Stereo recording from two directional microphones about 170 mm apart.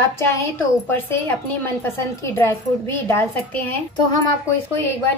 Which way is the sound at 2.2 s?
15° left (ahead or behind).